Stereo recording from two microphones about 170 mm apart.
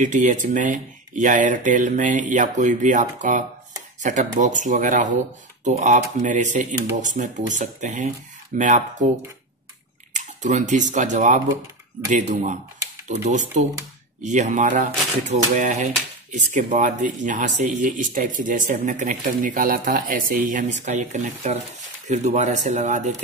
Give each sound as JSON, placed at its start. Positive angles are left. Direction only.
{"t": 0.0, "sound": "speech", "side_deg": -45}
{"t": 10.1, "sound": "speech", "side_deg": -45}